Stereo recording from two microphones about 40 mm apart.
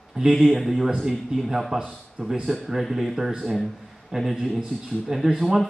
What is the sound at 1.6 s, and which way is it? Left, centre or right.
Speech, right.